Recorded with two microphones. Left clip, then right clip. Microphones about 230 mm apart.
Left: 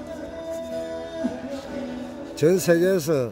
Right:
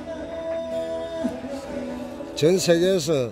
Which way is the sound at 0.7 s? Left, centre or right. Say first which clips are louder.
Right 3 dB; left.